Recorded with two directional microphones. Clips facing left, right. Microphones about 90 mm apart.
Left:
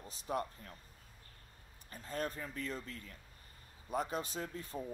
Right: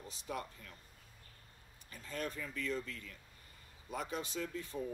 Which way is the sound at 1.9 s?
35° left (ahead or behind).